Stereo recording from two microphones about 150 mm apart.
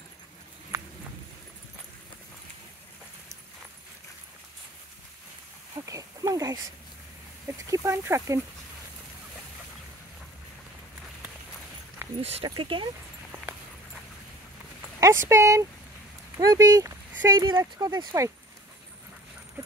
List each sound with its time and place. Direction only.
0.7 s clip-clop: 20° right (ahead or behind)
5.8 s a sound: 20° right (ahead or behind)
7.4 s speech: 20° right (ahead or behind)
12.2 s speech: 45° right (ahead or behind)
15.0 s speech: 20° right (ahead or behind)
17.1 s a sound: 15° right (ahead or behind)
17.4 s speech: 30° right (ahead or behind)